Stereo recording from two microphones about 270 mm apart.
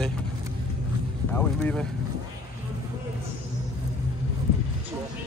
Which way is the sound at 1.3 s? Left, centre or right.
Centre.